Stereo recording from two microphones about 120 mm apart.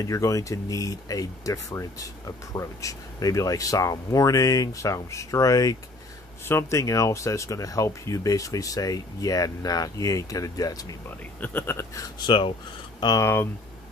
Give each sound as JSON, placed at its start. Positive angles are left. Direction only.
{"t": 0.0, "sound": "speech", "side_deg": 25}
{"t": 11.1, "sound": "speech", "side_deg": 15}
{"t": 12.3, "sound": "speech", "side_deg": 45}
{"t": 13.0, "sound": "speech", "side_deg": 30}